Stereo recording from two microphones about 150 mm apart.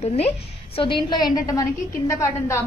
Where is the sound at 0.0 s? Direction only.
45° left (ahead or behind).